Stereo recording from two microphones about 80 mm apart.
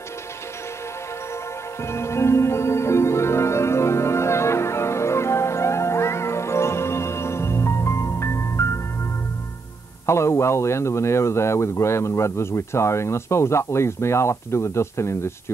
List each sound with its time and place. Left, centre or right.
1.9 s music: left
10.0 s speech: left